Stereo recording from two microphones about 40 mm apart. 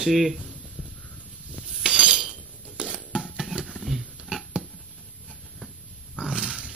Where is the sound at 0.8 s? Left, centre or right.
Right.